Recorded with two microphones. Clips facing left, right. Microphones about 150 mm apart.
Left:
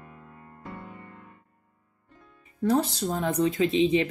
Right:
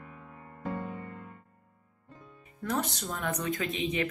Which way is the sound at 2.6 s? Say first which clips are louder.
Left 8 dB; 30° left (ahead or behind).